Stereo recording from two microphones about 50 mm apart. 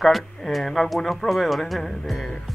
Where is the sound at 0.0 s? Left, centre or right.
Centre.